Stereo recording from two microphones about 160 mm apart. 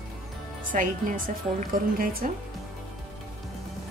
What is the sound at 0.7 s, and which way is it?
A woman's voice, 55° right (ahead or behind).